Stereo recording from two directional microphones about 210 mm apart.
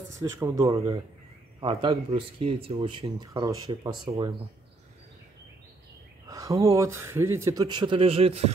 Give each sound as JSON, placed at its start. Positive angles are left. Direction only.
{"t": 0.2, "sound": "speech", "side_deg": -15}
{"t": 6.2, "sound": "speech", "side_deg": -15}